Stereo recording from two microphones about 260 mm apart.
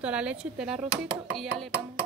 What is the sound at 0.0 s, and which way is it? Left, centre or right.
Speech, centre.